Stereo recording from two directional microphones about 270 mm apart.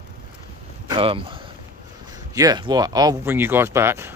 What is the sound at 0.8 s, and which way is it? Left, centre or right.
Speech, centre.